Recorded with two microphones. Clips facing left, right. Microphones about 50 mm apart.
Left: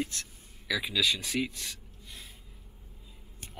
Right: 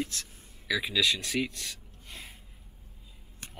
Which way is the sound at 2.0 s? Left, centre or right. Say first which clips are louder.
Right 3 dB; right.